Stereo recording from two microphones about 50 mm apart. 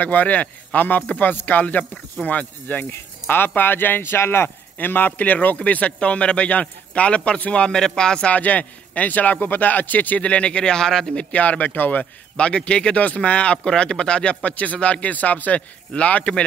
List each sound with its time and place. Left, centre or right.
0.0 s speech: left
2.9 s speech: left
4.7 s a man's voice: left
7.6 s speech: centre
8.3 s speech: left; by 11.2 s centre
11.3 s speech: left
12.0 s a man's voice: left